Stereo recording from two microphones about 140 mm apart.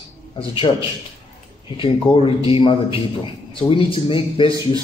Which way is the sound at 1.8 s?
40° left (ahead or behind).